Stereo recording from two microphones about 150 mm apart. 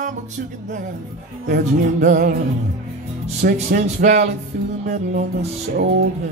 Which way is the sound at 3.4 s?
75° right (ahead or behind).